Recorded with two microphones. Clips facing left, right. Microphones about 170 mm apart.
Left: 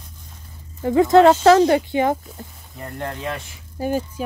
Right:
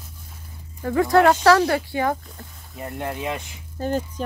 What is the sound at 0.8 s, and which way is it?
Speech, 20° left (ahead or behind).